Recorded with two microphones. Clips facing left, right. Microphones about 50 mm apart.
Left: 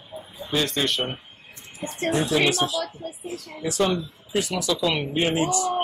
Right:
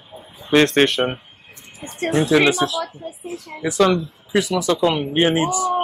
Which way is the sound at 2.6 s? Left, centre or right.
Right.